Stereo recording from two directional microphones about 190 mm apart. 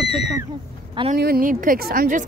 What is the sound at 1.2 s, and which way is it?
A woman's voice, 50° right (ahead or behind).